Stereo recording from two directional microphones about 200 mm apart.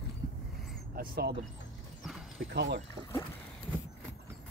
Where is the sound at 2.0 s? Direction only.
Centre (ahead or behind).